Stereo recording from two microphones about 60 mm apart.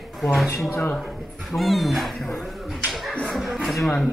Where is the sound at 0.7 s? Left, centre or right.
Left.